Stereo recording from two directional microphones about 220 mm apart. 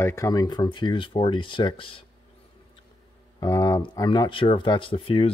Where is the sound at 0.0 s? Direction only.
15° left (ahead or behind).